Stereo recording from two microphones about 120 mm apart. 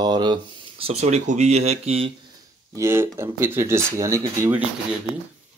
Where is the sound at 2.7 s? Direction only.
25° right (ahead or behind).